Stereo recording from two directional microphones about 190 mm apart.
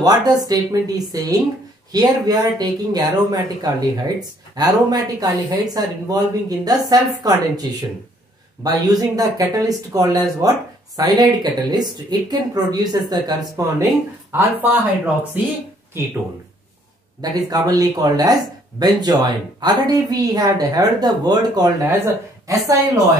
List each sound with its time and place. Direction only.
0.0 s speech: 20° right (ahead or behind)
8.6 s speech: 20° right (ahead or behind)
17.2 s speech: 20° right (ahead or behind)